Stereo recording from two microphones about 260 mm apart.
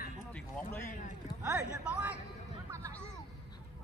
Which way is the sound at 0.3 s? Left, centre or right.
Centre.